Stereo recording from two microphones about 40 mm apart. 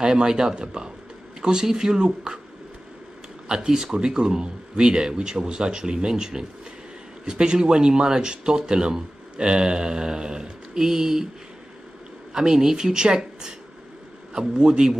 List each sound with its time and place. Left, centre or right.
0.0 s speech: centre
3.4 s speech: centre
12.4 s speech: centre